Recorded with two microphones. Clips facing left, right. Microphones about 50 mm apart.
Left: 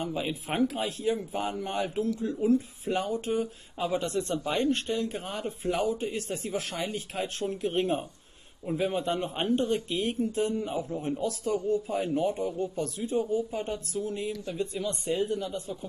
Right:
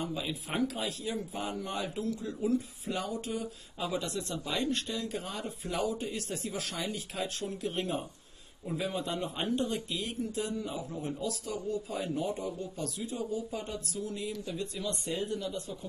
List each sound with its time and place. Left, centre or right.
0.0 s speech: left